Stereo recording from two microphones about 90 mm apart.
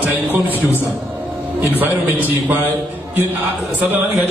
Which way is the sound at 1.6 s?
20° right (ahead or behind).